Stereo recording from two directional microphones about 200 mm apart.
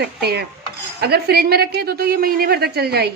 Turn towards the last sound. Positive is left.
turn(degrees=-55)  # may be behind; listen again after turning